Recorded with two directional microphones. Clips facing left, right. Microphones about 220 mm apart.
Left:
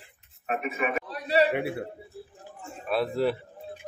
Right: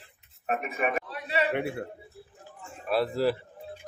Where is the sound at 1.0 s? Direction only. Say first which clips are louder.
Left 6 dB; 35° left (ahead or behind).